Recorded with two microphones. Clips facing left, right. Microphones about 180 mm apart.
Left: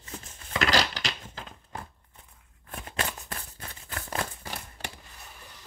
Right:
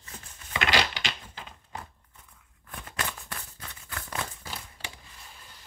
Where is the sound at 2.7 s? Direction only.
25° left (ahead or behind).